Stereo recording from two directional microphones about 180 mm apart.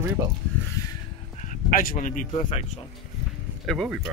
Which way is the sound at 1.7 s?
50° left (ahead or behind).